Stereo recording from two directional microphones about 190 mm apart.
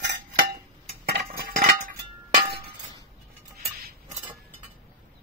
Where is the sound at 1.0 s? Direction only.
55° right (ahead or behind).